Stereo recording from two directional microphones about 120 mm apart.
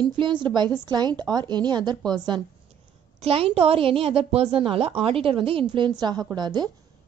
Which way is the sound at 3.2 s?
50° right (ahead or behind).